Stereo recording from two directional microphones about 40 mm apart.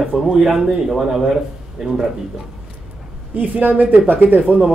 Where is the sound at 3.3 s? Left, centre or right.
Right.